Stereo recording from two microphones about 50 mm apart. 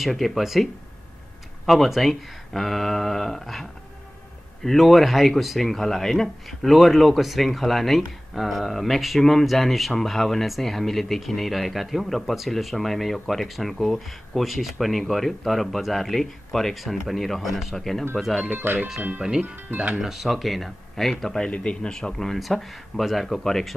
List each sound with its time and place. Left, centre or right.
0.0 s speech: centre
1.7 s speech: centre
4.6 s speech: centre
18.6 s speech: right
18.9 s speech: right
20.0 s speech: centre